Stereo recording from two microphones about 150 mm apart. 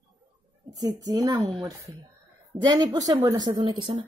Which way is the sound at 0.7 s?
25° right (ahead or behind).